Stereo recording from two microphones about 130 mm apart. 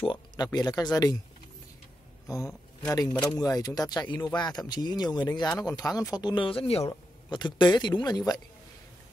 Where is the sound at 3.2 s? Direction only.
30° left (ahead or behind).